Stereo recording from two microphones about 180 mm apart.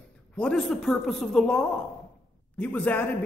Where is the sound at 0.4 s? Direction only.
5° left (ahead or behind).